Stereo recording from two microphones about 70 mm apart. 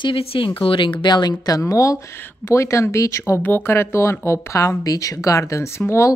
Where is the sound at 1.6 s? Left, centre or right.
Left.